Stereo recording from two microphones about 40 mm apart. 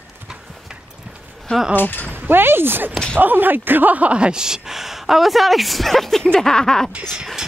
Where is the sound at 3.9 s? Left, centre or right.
Right.